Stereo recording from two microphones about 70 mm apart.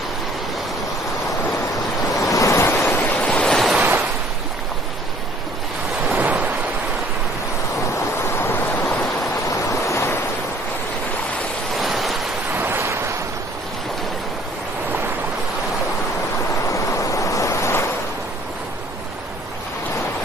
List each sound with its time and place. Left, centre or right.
2.3 s waves: left
2.7 s waves: left
3.2 s waves: centre
3.7 s waves: right
6.0 s waves: right
8.4 s waves: left
9.5 s a sound: left
11.8 s waves: centre
12.5 s waves: right
16.6 s waves: left